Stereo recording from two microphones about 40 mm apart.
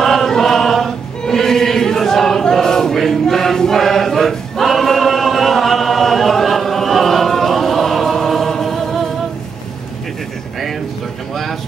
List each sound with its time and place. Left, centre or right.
0.0 s choir: centre